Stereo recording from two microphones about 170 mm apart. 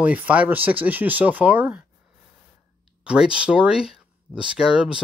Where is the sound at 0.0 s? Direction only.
10° right (ahead or behind).